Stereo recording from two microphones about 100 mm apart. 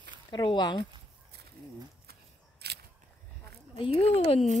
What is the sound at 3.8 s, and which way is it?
Speech, 90° left.